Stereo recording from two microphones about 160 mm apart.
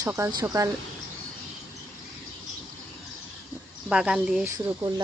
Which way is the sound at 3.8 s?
5° right (ahead or behind).